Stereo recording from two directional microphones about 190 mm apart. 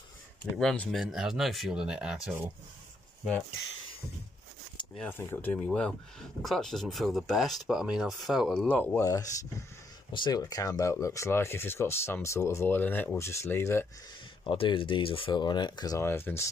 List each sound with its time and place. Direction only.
0.6 s speech: centre (ahead or behind)
4.9 s speech: 10° left (ahead or behind)
14.4 s speech: 25° left (ahead or behind); by 16.4 s 10° left (ahead or behind)